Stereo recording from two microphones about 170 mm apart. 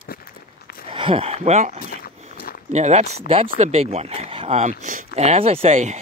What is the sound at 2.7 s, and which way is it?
Speech, 40° right (ahead or behind).